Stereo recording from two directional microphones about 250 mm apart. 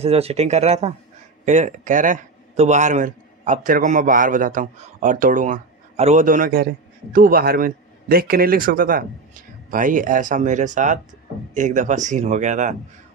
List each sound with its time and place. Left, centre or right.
0.0 s speech: right